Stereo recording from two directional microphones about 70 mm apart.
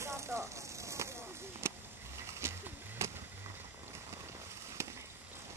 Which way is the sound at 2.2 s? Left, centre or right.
Right.